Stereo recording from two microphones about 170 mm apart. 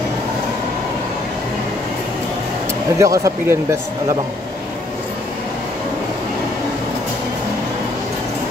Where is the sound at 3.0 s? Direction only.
15° right (ahead or behind).